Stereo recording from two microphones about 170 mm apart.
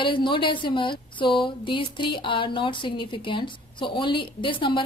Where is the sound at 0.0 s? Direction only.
30° left (ahead or behind).